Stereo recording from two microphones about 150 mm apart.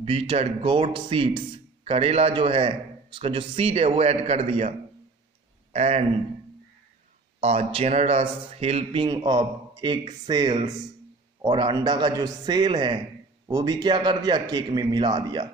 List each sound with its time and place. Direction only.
0.0 s a man's voice: 40° right (ahead or behind)
7.3 s speech: 45° right (ahead or behind)
9.0 s a man's voice: 25° right (ahead or behind)